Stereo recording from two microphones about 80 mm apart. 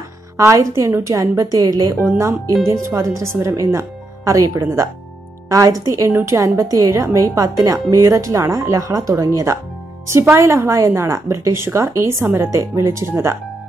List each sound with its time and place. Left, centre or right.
0.4 s a woman's voice: right